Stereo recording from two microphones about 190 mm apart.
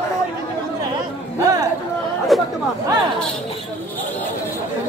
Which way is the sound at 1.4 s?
20° right (ahead or behind).